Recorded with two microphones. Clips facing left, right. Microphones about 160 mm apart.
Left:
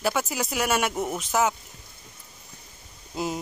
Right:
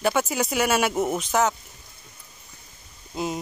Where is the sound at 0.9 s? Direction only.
20° right (ahead or behind).